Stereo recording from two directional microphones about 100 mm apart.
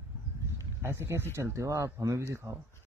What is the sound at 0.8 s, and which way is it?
Speech, 25° right (ahead or behind).